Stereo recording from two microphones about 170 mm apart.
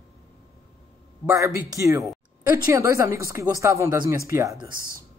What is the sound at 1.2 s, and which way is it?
Speech, 20° right (ahead or behind).